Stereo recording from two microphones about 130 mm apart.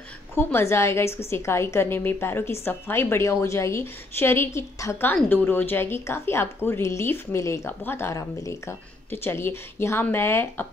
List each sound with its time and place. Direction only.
0.4 s a woman's voice: 20° left (ahead or behind)